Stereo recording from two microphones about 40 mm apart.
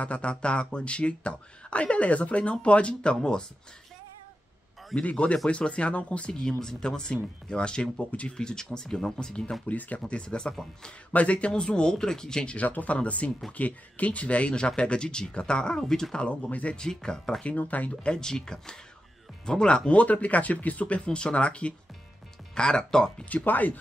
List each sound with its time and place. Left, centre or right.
0.0 s speech: left
5.0 s speech: left
6.3 s speech: centre; by 8.4 s left
8.4 s speech: centre
9.7 s speech: left
9.9 s speech: left
11.1 s speech: left
12.5 s speech: left
15.8 s speech: centre
16.4 s speech: left
16.7 s speech: centre
17.5 s speech: left
18.0 s speech: centre
23.3 s speech: left